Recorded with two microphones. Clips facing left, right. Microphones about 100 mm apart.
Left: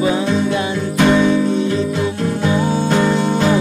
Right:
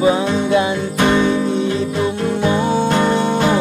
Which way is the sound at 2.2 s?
20° right (ahead or behind).